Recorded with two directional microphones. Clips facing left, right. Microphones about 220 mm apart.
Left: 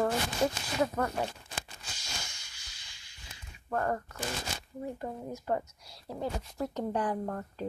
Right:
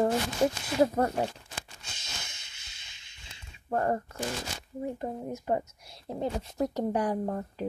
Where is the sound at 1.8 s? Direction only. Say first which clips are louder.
Left 1 dB; 25° right (ahead or behind).